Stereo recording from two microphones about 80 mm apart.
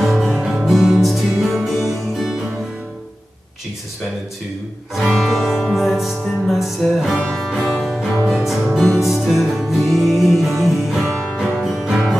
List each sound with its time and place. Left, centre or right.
0.0 s music: centre
4.9 s music: centre